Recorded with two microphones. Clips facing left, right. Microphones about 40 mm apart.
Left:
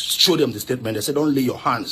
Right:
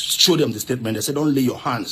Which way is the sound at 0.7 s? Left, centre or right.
Right.